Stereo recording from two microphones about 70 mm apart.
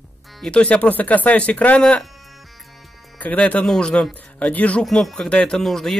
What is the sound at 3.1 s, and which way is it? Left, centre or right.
Speech, left.